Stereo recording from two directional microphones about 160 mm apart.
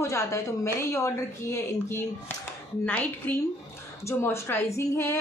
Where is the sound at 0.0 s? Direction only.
20° left (ahead or behind).